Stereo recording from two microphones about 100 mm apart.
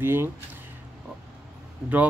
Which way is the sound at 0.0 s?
20° right (ahead or behind).